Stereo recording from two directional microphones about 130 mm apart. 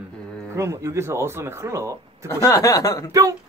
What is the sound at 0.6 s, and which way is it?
A man's voice, 20° right (ahead or behind).